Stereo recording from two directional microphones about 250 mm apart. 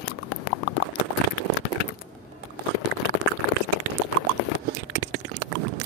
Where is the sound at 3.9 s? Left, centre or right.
Right.